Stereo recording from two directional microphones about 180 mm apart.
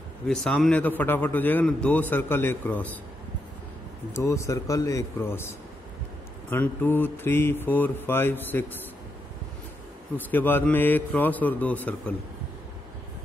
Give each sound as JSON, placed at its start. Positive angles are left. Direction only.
{"t": 0.3, "sound": "a man's voice", "side_deg": 5}
{"t": 4.1, "sound": "a man's voice", "side_deg": 15}
{"t": 6.5, "sound": "a man's voice", "side_deg": 10}
{"t": 10.1, "sound": "a man's voice", "side_deg": 10}